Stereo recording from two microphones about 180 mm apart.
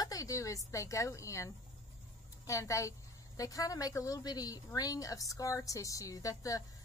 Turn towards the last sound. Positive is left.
turn(degrees=20)  # may be behind; listen again after turning